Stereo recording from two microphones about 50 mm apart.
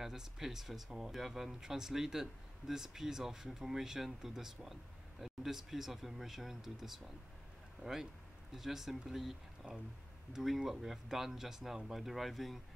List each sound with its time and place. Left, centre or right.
0.0 s speech: centre